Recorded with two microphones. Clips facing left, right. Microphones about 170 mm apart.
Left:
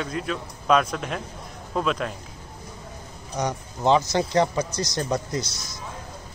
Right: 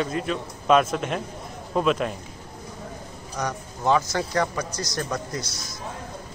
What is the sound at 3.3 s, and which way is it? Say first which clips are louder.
A man's voice: left 2 dB; 20° left (ahead or behind).